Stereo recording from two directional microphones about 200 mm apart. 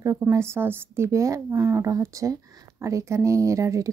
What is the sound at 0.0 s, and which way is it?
Speech, 15° right (ahead or behind).